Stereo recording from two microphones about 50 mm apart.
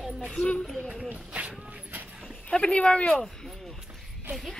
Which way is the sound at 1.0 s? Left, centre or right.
Right.